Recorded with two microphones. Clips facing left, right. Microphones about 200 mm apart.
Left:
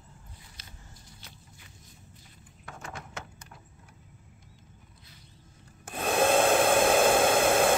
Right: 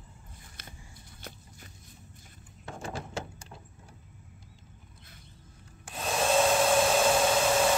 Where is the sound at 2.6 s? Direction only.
30° right (ahead or behind).